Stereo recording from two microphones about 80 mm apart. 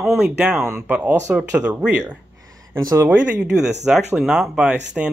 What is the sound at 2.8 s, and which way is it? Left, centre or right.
Speech, right.